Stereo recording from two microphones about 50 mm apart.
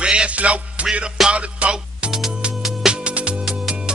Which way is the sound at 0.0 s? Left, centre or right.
Right.